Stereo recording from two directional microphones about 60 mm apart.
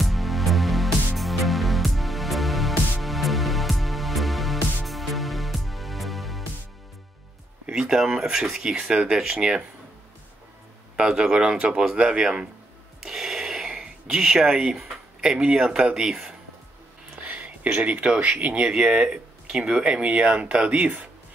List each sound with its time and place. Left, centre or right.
0.0 s music: centre
7.6 s speech: centre
11.0 s speech: centre
17.3 s a sound: right
18.0 s speech: centre